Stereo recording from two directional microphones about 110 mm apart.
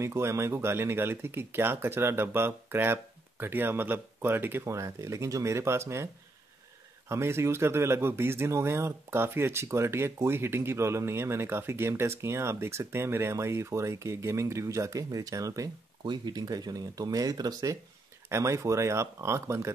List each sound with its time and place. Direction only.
0.0 s a man's voice: 25° right (ahead or behind)
7.1 s a man's voice: 25° right (ahead or behind)
16.0 s a man's voice: 40° right (ahead or behind); by 19.7 s 25° right (ahead or behind)